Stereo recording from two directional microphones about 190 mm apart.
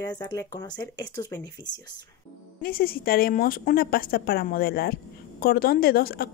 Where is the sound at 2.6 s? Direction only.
50° left (ahead or behind).